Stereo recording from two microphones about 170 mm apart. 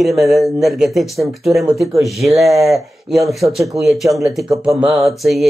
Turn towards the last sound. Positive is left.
turn(degrees=0)  # may be behind; listen again after turning